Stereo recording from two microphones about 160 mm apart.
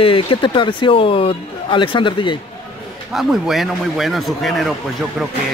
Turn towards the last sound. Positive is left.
turn(degrees=0)  # may be behind; listen again after turning